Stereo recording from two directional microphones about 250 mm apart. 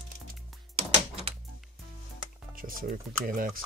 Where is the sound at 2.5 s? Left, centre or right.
Right.